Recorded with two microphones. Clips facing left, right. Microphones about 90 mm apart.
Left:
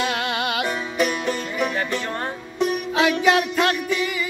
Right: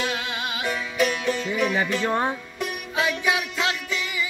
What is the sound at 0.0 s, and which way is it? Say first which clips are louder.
Music: left 4 dB; 70° left (ahead or behind).